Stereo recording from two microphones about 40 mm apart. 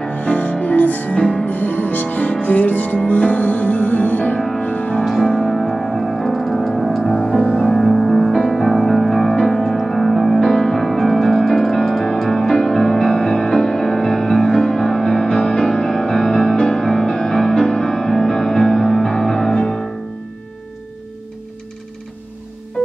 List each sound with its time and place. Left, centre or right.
0.1 s music: left
1.1 s music: left
1.4 s music: left
5.5 s music: centre
19.5 s music: left
22.8 s music: left